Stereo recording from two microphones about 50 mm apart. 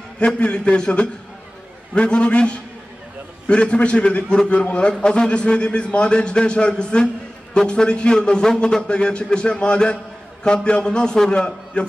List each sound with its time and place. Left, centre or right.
0.2 s a man's voice: left